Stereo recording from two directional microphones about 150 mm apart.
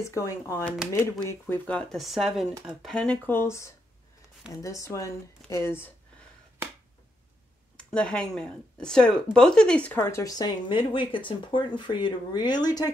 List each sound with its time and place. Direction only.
0.0 s speech: 20° left (ahead or behind)
7.7 s speech: 5° left (ahead or behind); by 12.9 s 25° left (ahead or behind)